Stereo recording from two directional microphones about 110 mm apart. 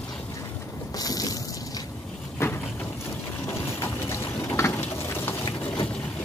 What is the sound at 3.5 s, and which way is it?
Boat, 25° left (ahead or behind).